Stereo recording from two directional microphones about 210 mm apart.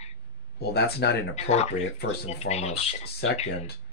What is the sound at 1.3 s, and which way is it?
A woman's voice, 30° left (ahead or behind).